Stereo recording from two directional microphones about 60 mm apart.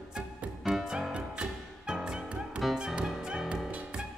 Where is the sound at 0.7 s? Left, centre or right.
Centre.